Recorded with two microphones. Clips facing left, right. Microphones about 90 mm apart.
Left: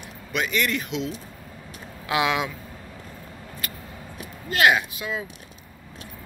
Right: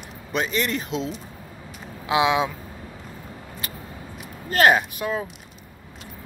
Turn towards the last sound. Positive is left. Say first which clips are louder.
# right 4 dB
turn(degrees=-45)  # may be behind; listen again after turning